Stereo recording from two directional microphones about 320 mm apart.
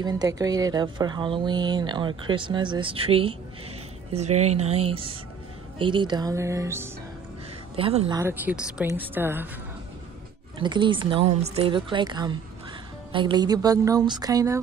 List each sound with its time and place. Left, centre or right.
0.0 s speech: centre
8.2 s a woman's voice: centre
10.6 s speech: centre